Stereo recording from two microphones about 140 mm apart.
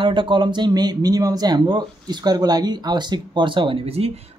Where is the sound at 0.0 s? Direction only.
35° right (ahead or behind).